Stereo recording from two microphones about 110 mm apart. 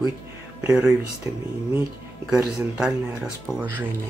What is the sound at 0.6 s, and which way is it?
Speech, 15° right (ahead or behind).